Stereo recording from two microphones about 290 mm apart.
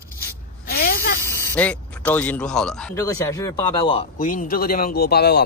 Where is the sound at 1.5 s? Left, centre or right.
Centre.